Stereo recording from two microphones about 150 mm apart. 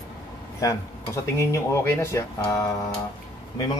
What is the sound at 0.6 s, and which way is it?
Speech, 20° left (ahead or behind).